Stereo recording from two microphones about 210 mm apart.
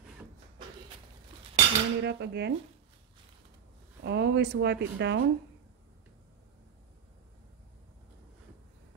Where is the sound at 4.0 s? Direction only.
55° right (ahead or behind).